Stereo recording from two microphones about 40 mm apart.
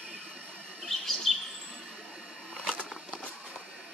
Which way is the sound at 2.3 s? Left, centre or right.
Right.